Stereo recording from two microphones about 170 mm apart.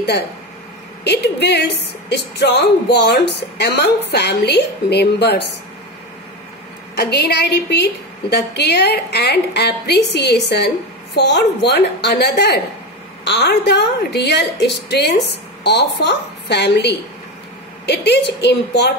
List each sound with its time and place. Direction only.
1.0 s a woman's voice: 80° left
7.0 s a woman's voice: 75° left (ahead or behind)